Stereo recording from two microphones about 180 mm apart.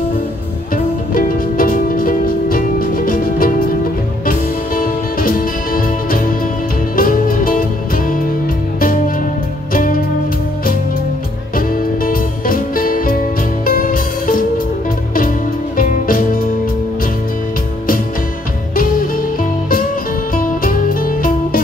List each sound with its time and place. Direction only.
1.1 s music: 50° left (ahead or behind)
11.5 s music: 50° left (ahead or behind)
20.3 s music: 50° left (ahead or behind)